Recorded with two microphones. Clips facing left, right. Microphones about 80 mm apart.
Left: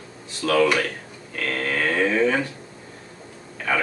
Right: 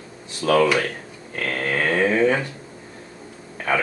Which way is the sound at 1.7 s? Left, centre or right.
Right.